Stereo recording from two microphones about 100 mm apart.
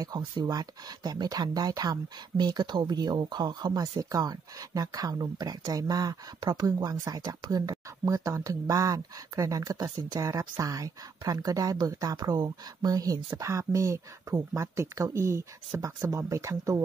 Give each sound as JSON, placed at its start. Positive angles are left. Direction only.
{"t": 0.0, "sound": "speech", "side_deg": -40}
{"t": 9.8, "sound": "speech", "side_deg": -50}
{"t": 10.2, "sound": "speech", "side_deg": -35}